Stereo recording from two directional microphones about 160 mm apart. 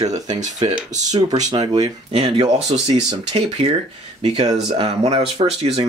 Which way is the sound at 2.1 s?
40° right (ahead or behind).